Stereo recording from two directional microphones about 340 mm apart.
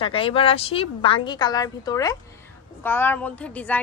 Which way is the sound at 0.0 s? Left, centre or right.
Centre.